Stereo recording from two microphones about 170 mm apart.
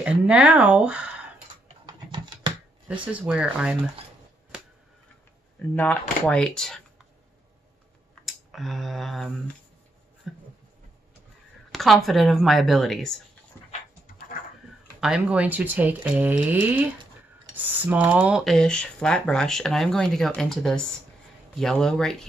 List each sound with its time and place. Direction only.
0.0 s speech: 5° right (ahead or behind)
1.9 s typing: 25° right (ahead or behind)
3.1 s speech: 10° right (ahead or behind)
5.8 s speech: 10° left (ahead or behind)
8.1 s a sound: centre (ahead or behind)
11.7 s speech: centre (ahead or behind)
13.5 s dog: 10° left (ahead or behind)
15.0 s speech: 5° right (ahead or behind)